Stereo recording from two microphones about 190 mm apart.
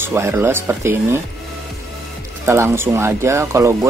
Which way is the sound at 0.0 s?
10° right (ahead or behind).